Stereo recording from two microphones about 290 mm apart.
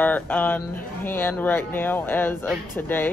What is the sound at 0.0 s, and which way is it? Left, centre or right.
Speech, centre.